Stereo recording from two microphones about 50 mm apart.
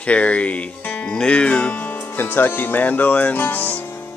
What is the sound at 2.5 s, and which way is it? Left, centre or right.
Speech, left.